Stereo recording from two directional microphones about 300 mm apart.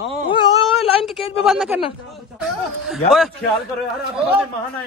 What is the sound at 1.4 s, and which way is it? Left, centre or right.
Speech, centre.